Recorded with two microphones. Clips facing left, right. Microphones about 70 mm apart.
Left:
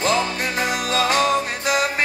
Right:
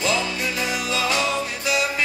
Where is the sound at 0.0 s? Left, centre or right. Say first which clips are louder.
Left 3 dB; left.